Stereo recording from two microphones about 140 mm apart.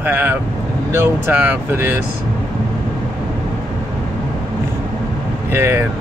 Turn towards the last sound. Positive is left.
turn(degrees=-15)  # may be behind; listen again after turning